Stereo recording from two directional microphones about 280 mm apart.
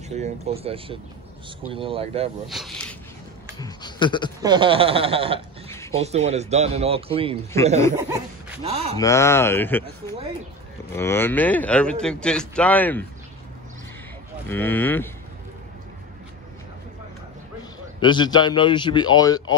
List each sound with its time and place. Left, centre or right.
0.1 s speech: right
2.4 s speech: centre
3.5 s a sound: centre
4.4 s speech: centre
5.7 s a sound: centre
5.9 s speech: right
7.5 s speech: centre
8.6 s speech: right
8.9 s a man's voice: centre
14.5 s speech: centre
18.0 s speech: centre